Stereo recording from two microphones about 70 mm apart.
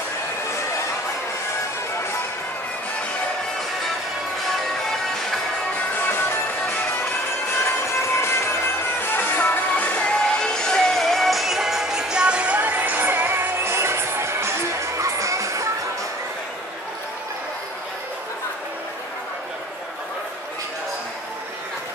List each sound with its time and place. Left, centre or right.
6.0 s music: left
8.2 s music: left; by 15.7 s right